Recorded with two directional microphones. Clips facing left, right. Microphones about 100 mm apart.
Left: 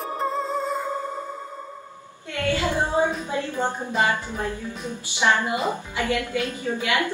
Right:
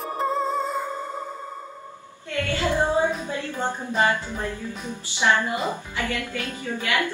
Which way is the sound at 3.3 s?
15° left (ahead or behind).